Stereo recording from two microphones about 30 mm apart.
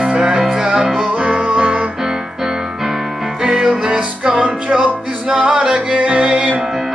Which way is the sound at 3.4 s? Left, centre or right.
Right.